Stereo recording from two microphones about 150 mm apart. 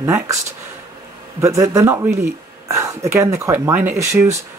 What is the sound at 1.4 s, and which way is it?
Speech, 20° right (ahead or behind).